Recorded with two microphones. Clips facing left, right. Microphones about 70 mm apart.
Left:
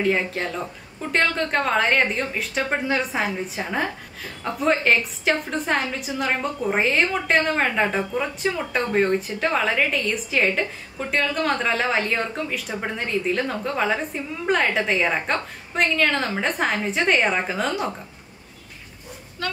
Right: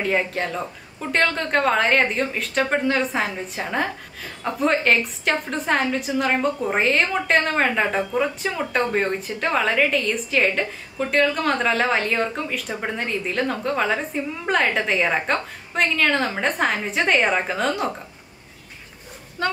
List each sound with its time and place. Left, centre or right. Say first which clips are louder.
0.0 s a woman's voice: even; centre
19.4 s speech: right 5 dB; right